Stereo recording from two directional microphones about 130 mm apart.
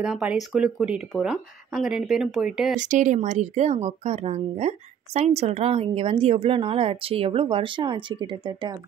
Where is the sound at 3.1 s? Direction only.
60° right (ahead or behind).